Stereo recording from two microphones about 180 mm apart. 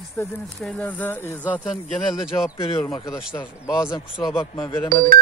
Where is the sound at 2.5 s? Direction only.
25° left (ahead or behind).